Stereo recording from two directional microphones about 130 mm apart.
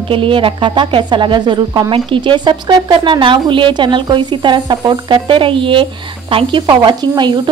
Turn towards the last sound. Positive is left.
turn(degrees=-35)  # may be behind; listen again after turning